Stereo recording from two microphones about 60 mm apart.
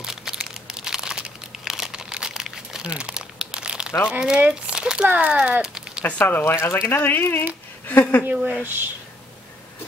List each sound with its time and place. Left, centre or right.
0.0 s crumpling: centre
4.1 s speech: centre
5.6 s a sound: centre
6.0 s speech: left
6.5 s speech: left
8.6 s speech: right